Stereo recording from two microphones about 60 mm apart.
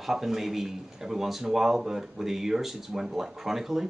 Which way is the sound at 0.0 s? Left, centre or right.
Centre.